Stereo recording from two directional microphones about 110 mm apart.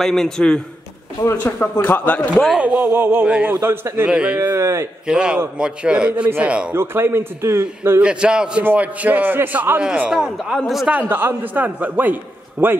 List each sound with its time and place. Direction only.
0.0 s a man's voice: 5° left (ahead or behind)
1.2 s speech: 20° left (ahead or behind)
2.3 s a man's voice: centre (ahead or behind)
2.8 s a man's voice: 20° right (ahead or behind)
3.3 s a man's voice: 10° right (ahead or behind)
3.6 s a man's voice: 20° right (ahead or behind)
4.1 s a man's voice: 10° right (ahead or behind)
5.0 s a man's voice: 10° right (ahead or behind)
6.7 s a man's voice: 20° right (ahead or behind)
8.0 s a man's voice: 10° right (ahead or behind)
10.9 s a man's voice: 15° right (ahead or behind)